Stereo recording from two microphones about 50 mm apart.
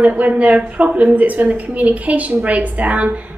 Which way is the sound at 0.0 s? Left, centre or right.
Right.